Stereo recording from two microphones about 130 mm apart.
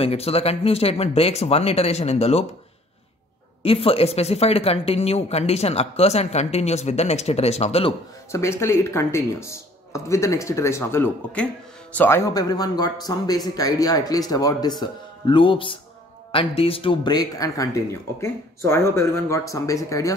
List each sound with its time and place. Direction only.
0.0 s speech: 50° left (ahead or behind)
3.6 s speech: 45° left (ahead or behind)
8.3 s speech: 20° left (ahead or behind)
12.3 s speech: 30° left (ahead or behind)